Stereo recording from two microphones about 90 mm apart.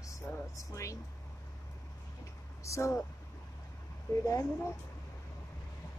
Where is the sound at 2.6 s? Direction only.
35° left (ahead or behind).